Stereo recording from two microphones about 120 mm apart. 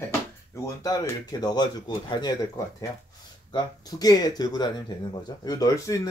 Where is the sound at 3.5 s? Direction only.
35° left (ahead or behind).